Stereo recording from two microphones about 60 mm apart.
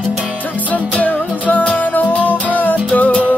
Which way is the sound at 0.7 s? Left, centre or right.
Left.